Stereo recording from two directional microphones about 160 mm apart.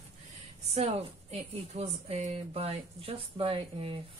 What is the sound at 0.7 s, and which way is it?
A woman's voice, 40° right (ahead or behind).